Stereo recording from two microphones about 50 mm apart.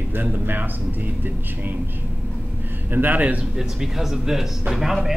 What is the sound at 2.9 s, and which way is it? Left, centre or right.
Speech, right.